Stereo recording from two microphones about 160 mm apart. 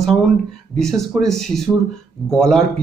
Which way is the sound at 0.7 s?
5° left (ahead or behind).